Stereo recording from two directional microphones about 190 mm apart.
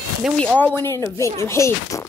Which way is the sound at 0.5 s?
10° left (ahead or behind).